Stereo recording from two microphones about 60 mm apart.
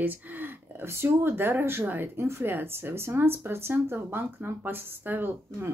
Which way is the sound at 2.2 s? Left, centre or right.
Right.